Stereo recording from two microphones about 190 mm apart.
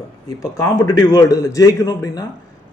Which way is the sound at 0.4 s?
20° left (ahead or behind).